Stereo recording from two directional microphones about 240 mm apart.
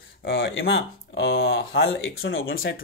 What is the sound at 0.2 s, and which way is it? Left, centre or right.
Speech, left.